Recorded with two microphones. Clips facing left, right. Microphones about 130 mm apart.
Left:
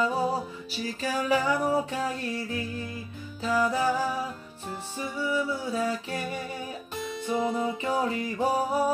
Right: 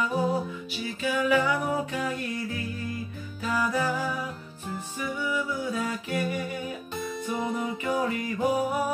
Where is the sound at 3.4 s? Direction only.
25° left (ahead or behind).